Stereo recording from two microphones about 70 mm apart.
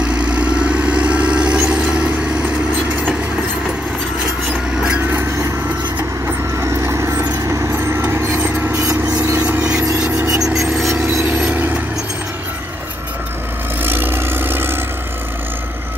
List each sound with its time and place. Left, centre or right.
0.1 s vehicle: centre
4.9 s vehicle: right
6.6 s vehicle: right
8.4 s vehicle: right
9.9 s a sound: right
10.6 s vehicle: centre
11.1 s a sound: right
11.5 s vehicle: right
13.8 s vehicle: right